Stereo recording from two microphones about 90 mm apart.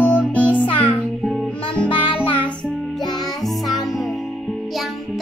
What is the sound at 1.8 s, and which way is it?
Music, 70° left (ahead or behind).